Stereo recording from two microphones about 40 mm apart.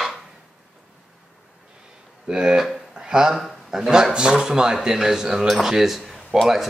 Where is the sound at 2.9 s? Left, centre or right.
Centre.